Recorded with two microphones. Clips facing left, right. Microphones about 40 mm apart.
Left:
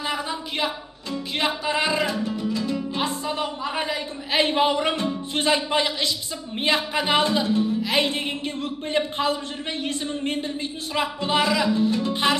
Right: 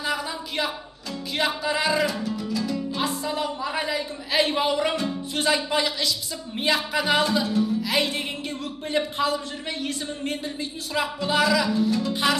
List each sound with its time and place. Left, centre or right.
0.0 s a sound: left
1.4 s music: left
8.9 s a man's voice: left